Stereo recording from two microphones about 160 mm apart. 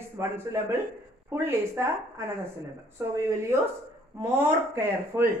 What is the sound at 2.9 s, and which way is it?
Speech, 15° right (ahead or behind).